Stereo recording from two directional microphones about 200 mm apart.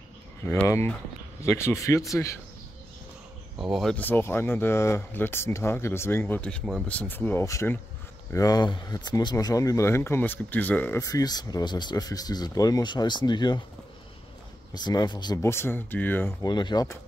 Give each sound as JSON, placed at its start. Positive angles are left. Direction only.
{"t": 0.4, "sound": "speech", "side_deg": 10}
{"t": 3.5, "sound": "speech", "side_deg": 0}
{"t": 14.7, "sound": "speech", "side_deg": 20}
{"t": 16.4, "sound": "speech", "side_deg": 20}